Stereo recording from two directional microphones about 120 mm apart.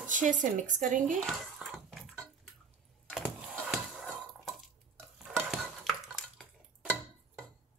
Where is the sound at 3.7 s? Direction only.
5° right (ahead or behind).